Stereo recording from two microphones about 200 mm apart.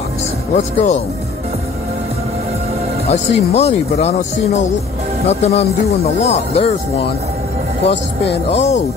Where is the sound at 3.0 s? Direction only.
30° left (ahead or behind).